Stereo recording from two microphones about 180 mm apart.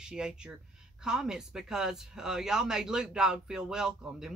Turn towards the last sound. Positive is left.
turn(degrees=-5)  # may be behind; listen again after turning